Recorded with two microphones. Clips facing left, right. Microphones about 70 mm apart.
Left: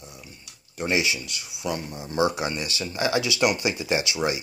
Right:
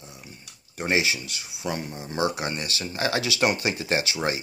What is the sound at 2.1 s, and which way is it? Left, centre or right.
Speech, left.